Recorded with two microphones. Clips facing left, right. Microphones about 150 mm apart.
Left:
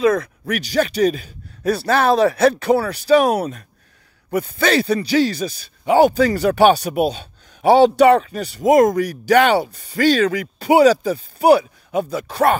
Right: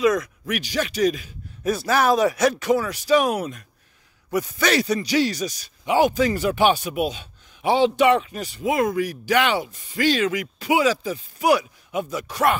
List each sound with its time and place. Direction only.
0.0 s speech: 30° left (ahead or behind)